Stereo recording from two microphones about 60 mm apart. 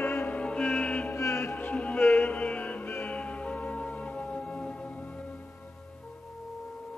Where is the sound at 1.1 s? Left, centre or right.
Left.